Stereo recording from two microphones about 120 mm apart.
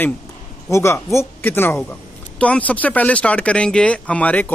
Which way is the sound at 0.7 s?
25° left (ahead or behind).